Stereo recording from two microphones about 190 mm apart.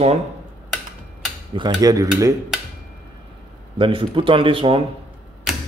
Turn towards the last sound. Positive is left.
turn(degrees=-5)  # may be behind; listen again after turning